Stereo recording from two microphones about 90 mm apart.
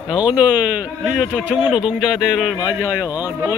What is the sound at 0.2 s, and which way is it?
Speech, 15° right (ahead or behind).